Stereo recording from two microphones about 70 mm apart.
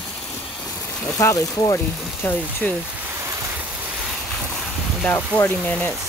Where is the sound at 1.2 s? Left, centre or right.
Left.